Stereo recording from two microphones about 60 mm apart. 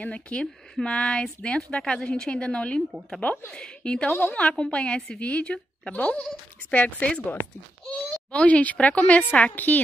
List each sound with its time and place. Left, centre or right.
0.0 s a woman's voice: centre
4.1 s a woman's voice: left
4.4 s a woman's voice: centre
8.3 s a woman's voice: left